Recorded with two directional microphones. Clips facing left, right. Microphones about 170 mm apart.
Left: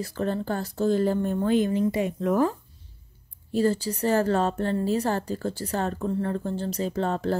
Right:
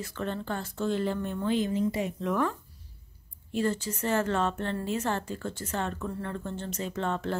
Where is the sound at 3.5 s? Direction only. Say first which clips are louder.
Left 5 dB; 35° left (ahead or behind).